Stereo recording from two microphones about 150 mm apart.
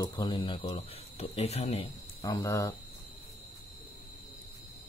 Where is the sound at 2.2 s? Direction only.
20° left (ahead or behind).